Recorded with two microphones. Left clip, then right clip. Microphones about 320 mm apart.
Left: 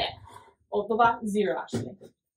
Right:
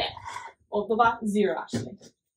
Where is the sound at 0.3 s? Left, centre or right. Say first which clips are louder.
Right 12 dB; centre.